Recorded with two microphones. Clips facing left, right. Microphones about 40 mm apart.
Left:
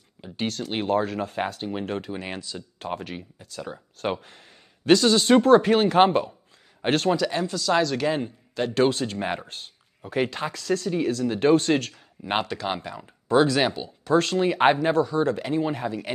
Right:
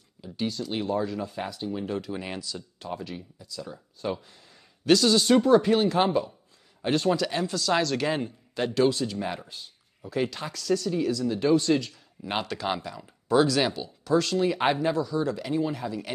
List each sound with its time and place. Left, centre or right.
0.2 s a sound: left
0.7 s speech: left
2.2 s speech: left
2.8 s speech: left
4.8 s speech: left
5.4 s speech: left
7.2 s speech: centre
8.7 s speech: left
12.2 s speech: left
14.1 s speech: left
15.4 s speech: left
15.7 s speech: left